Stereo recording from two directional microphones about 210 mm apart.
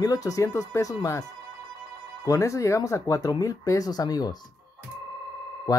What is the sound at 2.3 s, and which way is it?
Speech, 15° left (ahead or behind).